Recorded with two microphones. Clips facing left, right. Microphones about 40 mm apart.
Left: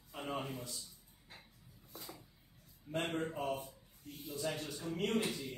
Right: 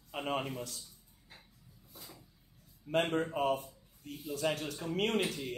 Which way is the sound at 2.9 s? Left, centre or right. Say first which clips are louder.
Right 6 dB; right.